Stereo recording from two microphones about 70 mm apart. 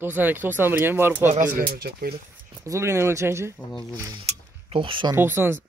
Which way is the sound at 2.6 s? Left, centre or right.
Right.